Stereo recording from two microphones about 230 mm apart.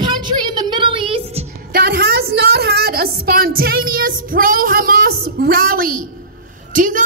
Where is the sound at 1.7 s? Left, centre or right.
Right.